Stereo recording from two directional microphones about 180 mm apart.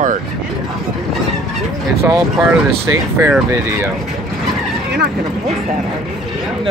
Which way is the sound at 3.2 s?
10° right (ahead or behind).